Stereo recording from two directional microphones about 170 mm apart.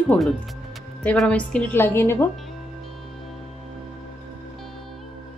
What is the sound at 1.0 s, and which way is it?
A woman's voice, 5° left (ahead or behind).